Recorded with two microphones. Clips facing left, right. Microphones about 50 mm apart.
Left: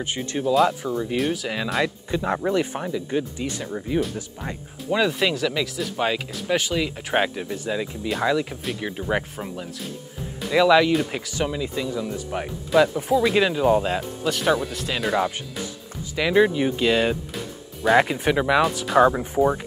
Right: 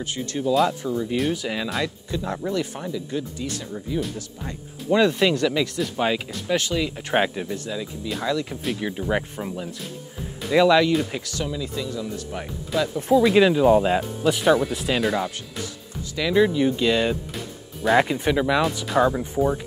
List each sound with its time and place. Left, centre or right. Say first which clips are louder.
0.0 s speech: left 1 dB; left
1.1 s speech: even; centre
2.0 s speech: left 4 dB; left
4.8 s speech: right 3 dB; centre
7.7 s speech: left 3 dB; left
8.5 s speech: right 2 dB; centre
11.4 s speech: left 4 dB; left
13.1 s speech: right 8 dB; centre
16.2 s speech: left 1 dB; left